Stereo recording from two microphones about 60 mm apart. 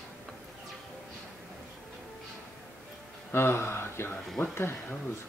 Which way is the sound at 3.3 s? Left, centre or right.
Left.